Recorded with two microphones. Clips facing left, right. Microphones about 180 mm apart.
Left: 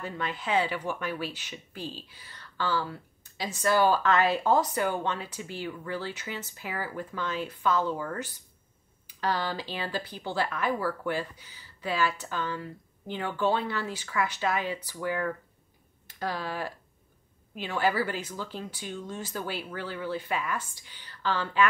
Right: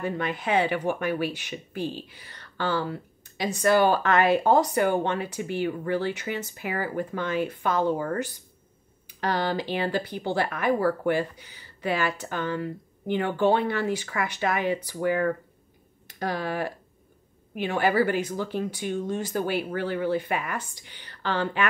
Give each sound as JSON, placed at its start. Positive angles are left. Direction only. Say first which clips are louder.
{"t": 0.0, "sound": "speech", "louder": "right 6 dB", "side_deg": -55}
{"t": 9.2, "sound": "speech", "louder": "right 4 dB", "side_deg": -55}